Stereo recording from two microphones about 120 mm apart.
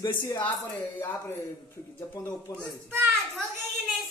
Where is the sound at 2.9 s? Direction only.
20° right (ahead or behind).